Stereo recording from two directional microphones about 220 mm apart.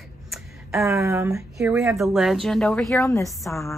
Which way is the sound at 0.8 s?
15° right (ahead or behind).